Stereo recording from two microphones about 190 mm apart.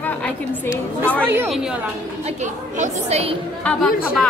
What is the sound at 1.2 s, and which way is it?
Speech, 10° right (ahead or behind).